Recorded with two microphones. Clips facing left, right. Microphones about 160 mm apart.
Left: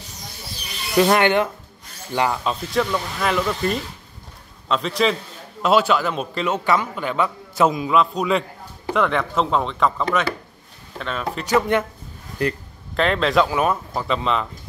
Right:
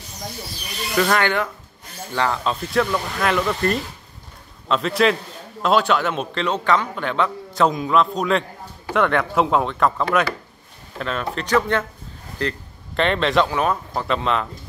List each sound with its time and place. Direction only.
0.9 s speech: 20° left (ahead or behind)
2.4 s a man's voice: centre (ahead or behind)